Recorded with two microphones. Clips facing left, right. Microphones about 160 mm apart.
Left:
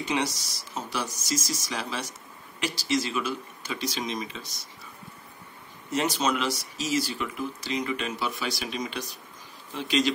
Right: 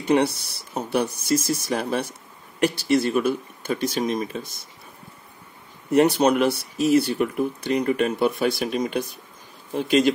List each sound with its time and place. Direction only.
0.0 s speech: 60° right (ahead or behind)
5.9 s speech: 65° right (ahead or behind)